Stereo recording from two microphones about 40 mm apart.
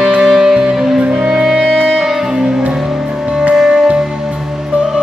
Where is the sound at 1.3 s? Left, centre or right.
Centre.